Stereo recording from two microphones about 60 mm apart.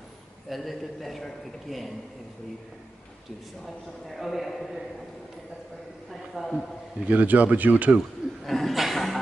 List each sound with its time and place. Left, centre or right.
0.5 s a man's voice: centre
3.6 s a man's voice: centre
6.3 s a man's voice: centre
7.1 s speech: right
8.5 s chuckle: centre